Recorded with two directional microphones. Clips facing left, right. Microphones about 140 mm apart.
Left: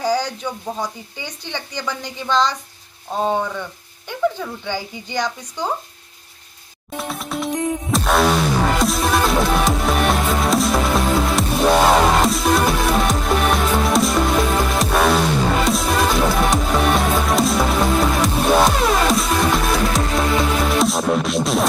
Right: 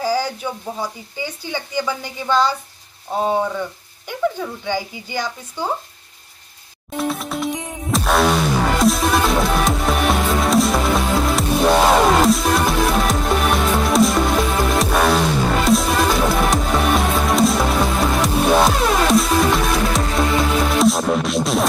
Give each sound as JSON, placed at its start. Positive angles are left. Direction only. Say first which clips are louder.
{"t": 0.0, "sound": "speech", "louder": "even", "side_deg": -5}
{"t": 4.6, "sound": "speech", "louder": "right 4 dB", "side_deg": -10}
{"t": 7.0, "sound": "music", "louder": "right 3 dB", "side_deg": 0}